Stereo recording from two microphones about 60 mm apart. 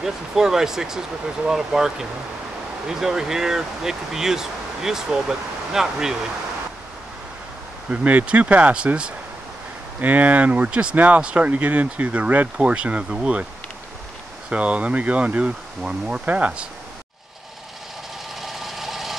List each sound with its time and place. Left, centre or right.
0.0 s speech: centre
7.9 s speech: right
14.5 s speech: right
18.4 s engine knocking: centre